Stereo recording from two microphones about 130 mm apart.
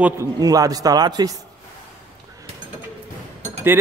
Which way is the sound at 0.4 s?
30° right (ahead or behind).